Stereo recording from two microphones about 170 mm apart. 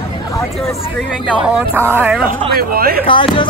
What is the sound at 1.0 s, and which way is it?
A man's voice, 5° right (ahead or behind).